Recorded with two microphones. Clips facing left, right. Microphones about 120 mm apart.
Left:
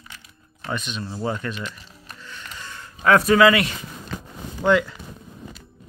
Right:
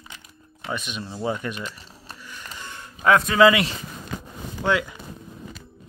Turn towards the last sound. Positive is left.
turn(degrees=-5)  # may be behind; listen again after turning